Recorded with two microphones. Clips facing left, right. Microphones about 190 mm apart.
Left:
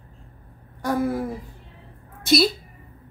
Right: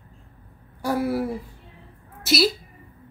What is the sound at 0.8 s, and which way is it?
Speech, 10° right (ahead or behind).